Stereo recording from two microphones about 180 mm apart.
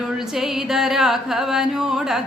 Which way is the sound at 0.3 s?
Centre (ahead or behind).